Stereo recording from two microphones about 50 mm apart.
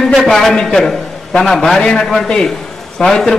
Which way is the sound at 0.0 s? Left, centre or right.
Centre.